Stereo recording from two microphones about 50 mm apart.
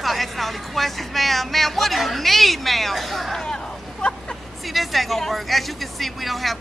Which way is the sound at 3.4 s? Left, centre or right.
Centre.